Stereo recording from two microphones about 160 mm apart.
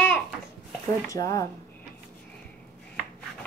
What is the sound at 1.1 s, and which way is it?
Speech, 20° left (ahead or behind).